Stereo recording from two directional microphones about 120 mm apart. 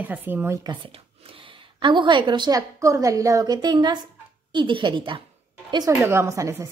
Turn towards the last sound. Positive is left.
turn(degrees=-25)  # may be behind; listen again after turning